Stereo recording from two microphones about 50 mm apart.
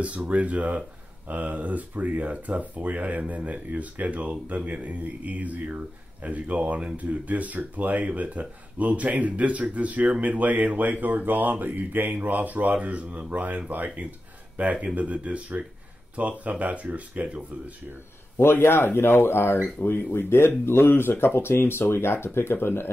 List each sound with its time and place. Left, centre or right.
0.0 s speech: right
18.4 s speech: left